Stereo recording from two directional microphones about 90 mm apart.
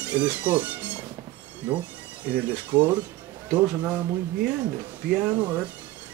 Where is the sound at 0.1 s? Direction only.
20° right (ahead or behind).